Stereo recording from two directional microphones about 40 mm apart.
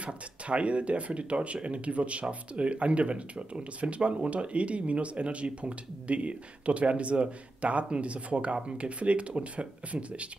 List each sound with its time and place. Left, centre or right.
0.0 s speech: right